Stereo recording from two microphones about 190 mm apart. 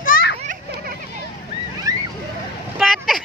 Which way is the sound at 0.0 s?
45° left (ahead or behind).